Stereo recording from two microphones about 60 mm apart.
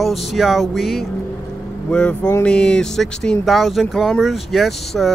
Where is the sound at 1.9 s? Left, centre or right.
Centre.